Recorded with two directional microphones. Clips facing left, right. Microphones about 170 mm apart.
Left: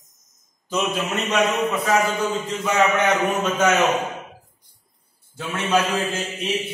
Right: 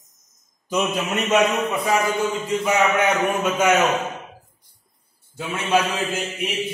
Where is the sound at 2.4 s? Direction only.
10° right (ahead or behind).